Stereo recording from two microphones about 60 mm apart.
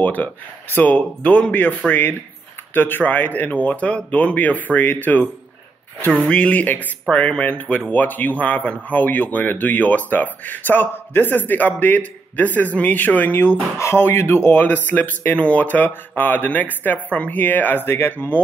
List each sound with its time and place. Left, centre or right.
0.0 s speech: left
1.5 s speech: left
6.1 s speech: centre; by 18.4 s left